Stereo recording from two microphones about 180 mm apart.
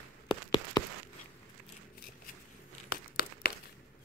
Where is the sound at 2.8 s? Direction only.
60° left (ahead or behind).